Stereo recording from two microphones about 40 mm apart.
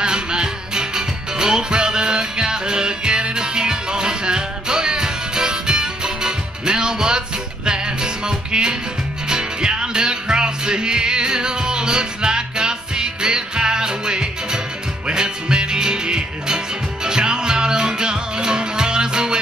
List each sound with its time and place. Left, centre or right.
0.0 s music: right